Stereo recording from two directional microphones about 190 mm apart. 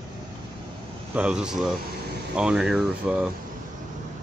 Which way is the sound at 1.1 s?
5° right (ahead or behind).